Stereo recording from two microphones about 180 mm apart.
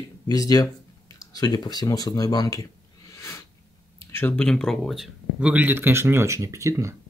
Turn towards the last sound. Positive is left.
turn(degrees=-15)  # may be behind; listen again after turning